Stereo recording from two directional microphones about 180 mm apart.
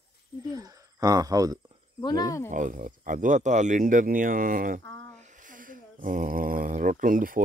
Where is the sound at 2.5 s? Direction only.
45° right (ahead or behind).